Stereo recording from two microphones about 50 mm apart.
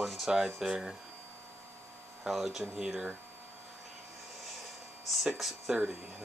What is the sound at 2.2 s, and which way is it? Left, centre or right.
Speech, centre.